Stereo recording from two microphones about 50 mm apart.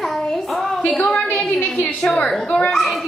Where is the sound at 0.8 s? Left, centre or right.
Centre.